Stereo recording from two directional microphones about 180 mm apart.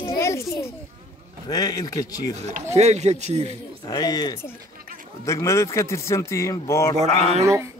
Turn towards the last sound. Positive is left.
turn(degrees=-15)  # may be behind; listen again after turning